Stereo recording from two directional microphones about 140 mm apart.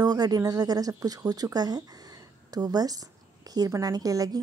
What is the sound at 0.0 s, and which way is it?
Speech, 30° right (ahead or behind).